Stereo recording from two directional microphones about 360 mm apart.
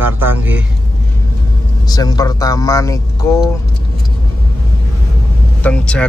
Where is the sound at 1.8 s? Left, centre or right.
Centre.